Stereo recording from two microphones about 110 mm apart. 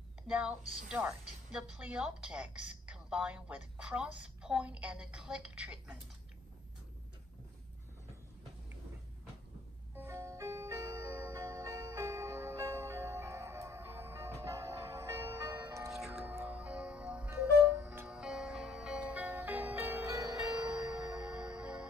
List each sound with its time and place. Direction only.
0.3 s a woman's voice: 10° right (ahead or behind)
9.9 s music: 25° right (ahead or behind)
15.9 s music: centre (ahead or behind)
16.3 s music: 15° right (ahead or behind)
21.2 s music: 10° right (ahead or behind)